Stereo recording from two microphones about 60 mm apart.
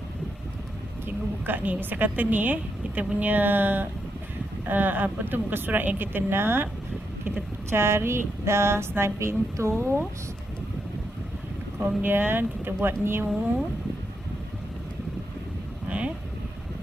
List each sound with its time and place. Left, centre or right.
1.0 s a woman's voice: right
7.7 s speech: right
12.0 s a woman's voice: right